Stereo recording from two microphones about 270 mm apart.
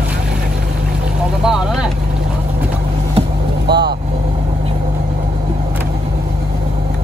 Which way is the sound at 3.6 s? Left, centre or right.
Right.